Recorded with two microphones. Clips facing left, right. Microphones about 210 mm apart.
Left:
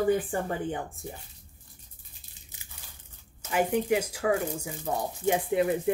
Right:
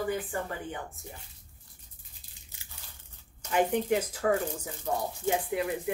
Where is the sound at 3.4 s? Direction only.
5° left (ahead or behind).